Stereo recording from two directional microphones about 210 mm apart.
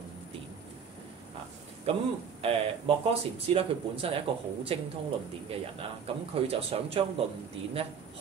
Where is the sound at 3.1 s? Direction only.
25° right (ahead or behind).